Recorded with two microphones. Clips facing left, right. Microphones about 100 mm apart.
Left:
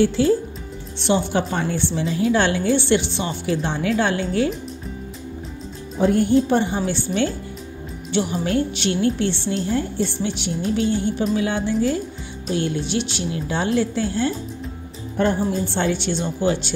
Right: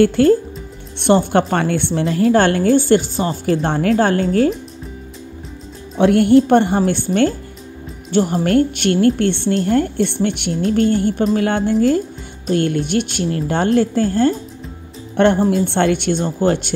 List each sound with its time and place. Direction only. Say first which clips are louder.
0.0 s a woman's voice: right 5 dB; 55° right (ahead or behind)
1.5 s a woman's voice: right 5 dB; 60° right (ahead or behind); by 4.6 s 45° right (ahead or behind)
5.9 s a woman's voice: right 6 dB; 75° right (ahead or behind); by 12.0 s 45° right (ahead or behind)
12.4 s a woman's voice: right 6 dB; 55° right (ahead or behind)
15.1 s speech: right 7 dB; 75° right (ahead or behind)
15.5 s a woman's voice: right 6 dB; 60° right (ahead or behind)